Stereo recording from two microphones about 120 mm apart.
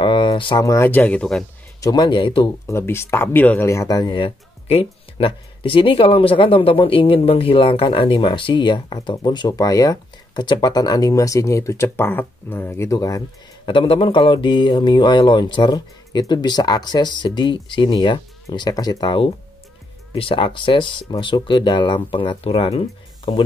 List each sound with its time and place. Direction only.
0.0 s a sound: 45° left (ahead or behind)
0.6 s speech: 25° left (ahead or behind); by 1.4 s 10° left (ahead or behind)
1.8 s speech: 35° left (ahead or behind)
2.6 s speech: 20° left (ahead or behind)
4.1 s speech: 50° left (ahead or behind); by 13.2 s 25° left (ahead or behind)
13.7 s speech: 45° left (ahead or behind)